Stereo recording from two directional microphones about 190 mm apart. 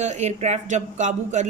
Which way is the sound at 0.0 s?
35° right (ahead or behind).